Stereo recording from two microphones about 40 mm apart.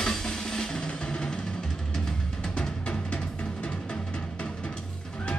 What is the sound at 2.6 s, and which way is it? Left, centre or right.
Music, left.